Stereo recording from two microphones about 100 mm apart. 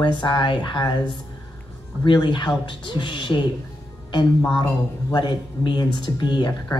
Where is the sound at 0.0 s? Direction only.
50° left (ahead or behind).